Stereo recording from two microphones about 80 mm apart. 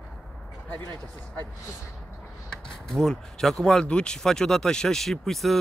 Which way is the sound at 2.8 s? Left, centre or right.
Centre.